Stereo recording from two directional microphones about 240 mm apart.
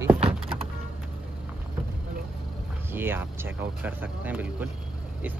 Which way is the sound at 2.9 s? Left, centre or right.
Centre.